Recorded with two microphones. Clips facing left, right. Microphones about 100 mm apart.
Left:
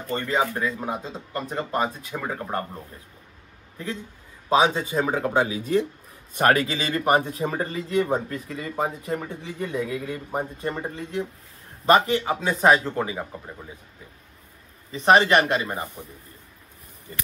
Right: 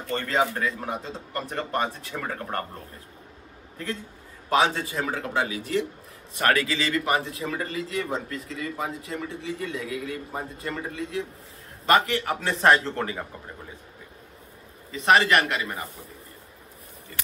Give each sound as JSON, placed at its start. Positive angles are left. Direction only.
{"t": 0.1, "sound": "speech", "side_deg": 15}
{"t": 3.7, "sound": "a man's voice", "side_deg": 10}
{"t": 4.5, "sound": "speech", "side_deg": 20}
{"t": 12.4, "sound": "speech", "side_deg": 10}
{"t": 14.9, "sound": "speech", "side_deg": 30}